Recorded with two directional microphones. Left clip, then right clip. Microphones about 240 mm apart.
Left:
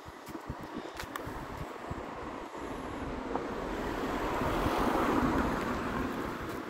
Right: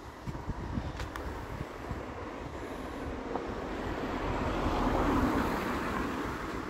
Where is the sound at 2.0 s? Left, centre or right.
Left.